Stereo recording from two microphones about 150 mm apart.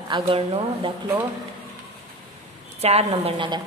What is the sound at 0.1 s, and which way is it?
Speech, 35° right (ahead or behind).